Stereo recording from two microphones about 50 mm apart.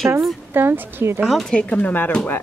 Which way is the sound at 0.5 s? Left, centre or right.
Right.